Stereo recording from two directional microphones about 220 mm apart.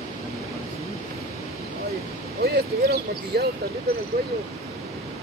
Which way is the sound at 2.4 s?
45° right (ahead or behind).